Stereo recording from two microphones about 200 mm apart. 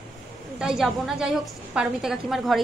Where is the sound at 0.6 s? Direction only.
5° right (ahead or behind).